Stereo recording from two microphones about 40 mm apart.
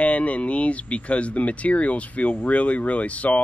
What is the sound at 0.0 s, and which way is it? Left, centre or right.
Speech, left.